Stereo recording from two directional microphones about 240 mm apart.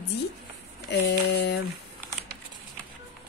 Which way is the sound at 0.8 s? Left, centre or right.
Left.